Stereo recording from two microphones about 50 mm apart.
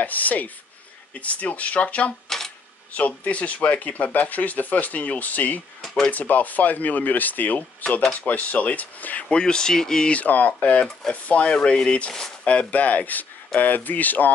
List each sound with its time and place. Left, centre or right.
0.0 s speech: left
2.2 s a sound: centre
2.9 s speech: left
9.3 s speech: centre
10.1 s speech: left